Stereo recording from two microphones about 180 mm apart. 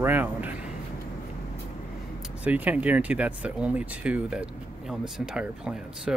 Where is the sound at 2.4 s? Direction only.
10° right (ahead or behind).